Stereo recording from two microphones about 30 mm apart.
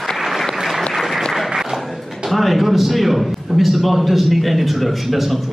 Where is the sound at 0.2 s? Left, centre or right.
Centre.